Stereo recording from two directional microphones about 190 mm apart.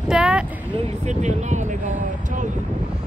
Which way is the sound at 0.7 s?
35° right (ahead or behind).